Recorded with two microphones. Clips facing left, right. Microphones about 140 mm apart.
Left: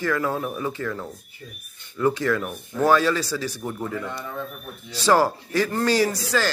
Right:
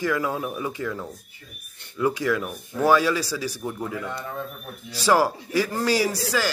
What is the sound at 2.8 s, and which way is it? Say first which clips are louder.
A man's voice: even; 10° right (ahead or behind).